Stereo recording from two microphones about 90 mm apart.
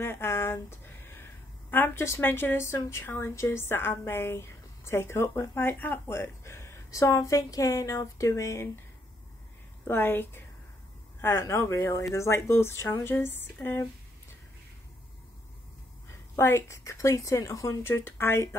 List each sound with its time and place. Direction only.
0.0 s speech: 25° left (ahead or behind)
9.8 s speech: 25° left (ahead or behind)
16.3 s speech: 30° left (ahead or behind)